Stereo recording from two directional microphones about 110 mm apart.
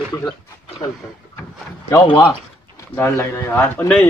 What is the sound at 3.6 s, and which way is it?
Speech, 10° left (ahead or behind).